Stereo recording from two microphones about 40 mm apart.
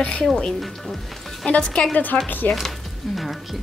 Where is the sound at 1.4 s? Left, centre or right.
Left.